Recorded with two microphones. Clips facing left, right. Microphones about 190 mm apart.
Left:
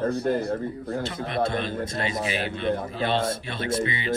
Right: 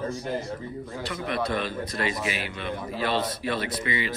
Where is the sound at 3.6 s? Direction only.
25° left (ahead or behind).